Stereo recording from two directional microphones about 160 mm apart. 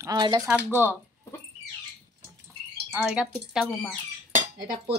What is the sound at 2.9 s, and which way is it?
Speech, 15° right (ahead or behind).